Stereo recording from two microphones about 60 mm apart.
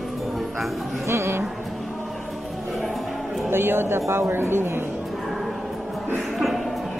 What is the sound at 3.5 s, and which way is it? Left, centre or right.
A man's voice, right.